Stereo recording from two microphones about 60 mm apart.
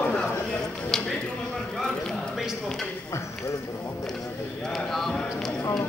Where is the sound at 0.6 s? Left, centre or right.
Centre.